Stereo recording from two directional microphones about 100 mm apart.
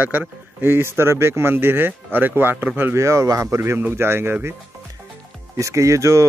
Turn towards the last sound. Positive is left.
turn(degrees=-30)  # may be behind; listen again after turning